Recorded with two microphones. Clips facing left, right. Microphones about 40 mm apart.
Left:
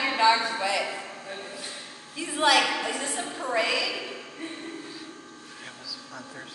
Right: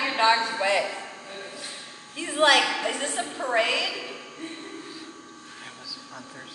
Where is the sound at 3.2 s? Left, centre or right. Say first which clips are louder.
Right 2 dB; centre.